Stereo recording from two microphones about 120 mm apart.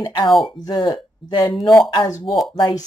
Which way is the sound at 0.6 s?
35° left (ahead or behind).